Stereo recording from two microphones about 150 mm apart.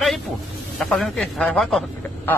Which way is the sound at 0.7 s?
Centre (ahead or behind).